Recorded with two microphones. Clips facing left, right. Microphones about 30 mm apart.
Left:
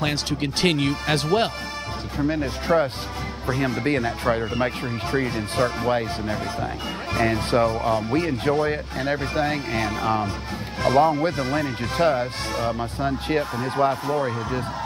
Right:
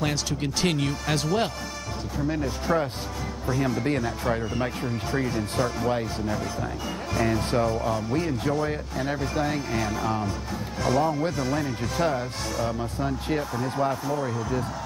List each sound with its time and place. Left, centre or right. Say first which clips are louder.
0.0 s speech: left 3 dB; left